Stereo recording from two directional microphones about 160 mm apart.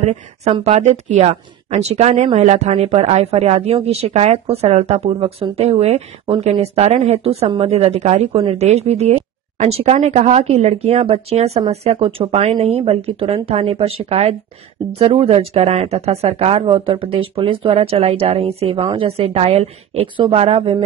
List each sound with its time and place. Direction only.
0.0 s speech: 40° right (ahead or behind)